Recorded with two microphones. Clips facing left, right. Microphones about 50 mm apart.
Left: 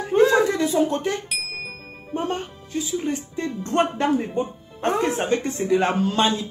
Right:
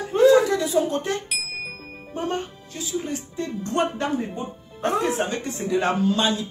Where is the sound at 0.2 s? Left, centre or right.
Left.